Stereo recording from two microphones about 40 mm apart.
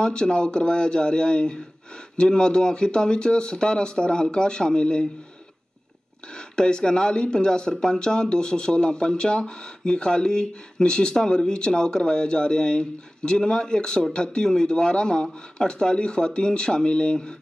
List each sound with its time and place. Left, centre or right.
0.0 s speech: left
6.3 s speech: left